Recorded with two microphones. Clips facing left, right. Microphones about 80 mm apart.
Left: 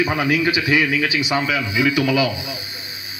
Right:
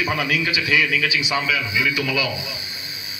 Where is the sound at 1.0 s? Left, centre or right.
Left.